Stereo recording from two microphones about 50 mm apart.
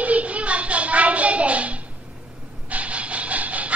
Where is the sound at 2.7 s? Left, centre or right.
Right.